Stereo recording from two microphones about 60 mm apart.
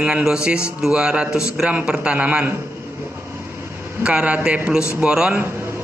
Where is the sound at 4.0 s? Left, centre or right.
Centre.